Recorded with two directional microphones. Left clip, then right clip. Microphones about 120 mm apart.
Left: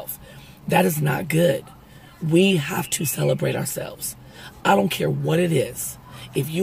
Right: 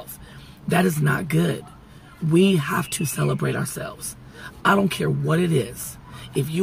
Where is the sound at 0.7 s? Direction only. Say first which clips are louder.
Left 2 dB; 15° left (ahead or behind).